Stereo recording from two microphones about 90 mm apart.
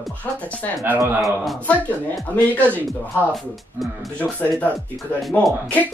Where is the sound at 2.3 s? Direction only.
20° left (ahead or behind).